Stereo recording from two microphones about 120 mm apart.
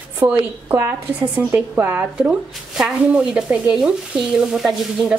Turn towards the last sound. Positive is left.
turn(degrees=-5)  # may be behind; listen again after turning